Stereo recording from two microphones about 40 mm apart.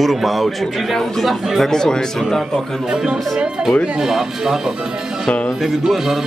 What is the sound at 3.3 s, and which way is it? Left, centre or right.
Speech, centre.